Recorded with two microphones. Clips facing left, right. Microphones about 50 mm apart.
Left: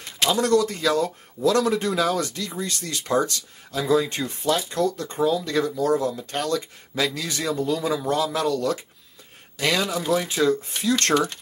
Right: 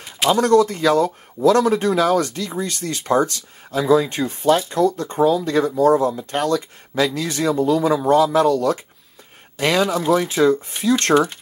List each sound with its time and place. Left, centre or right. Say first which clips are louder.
0.3 s speech: right 6 dB; right